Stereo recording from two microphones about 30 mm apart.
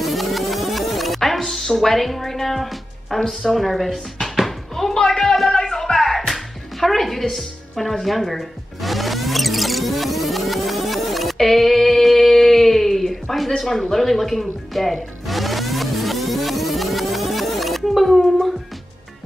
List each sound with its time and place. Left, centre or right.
0.0 s music: centre
3.3 s speech: centre
4.5 s a sound: centre
4.9 s a man's voice: centre
5.6 s music: centre
11.3 s a sound: centre
13.6 s music: centre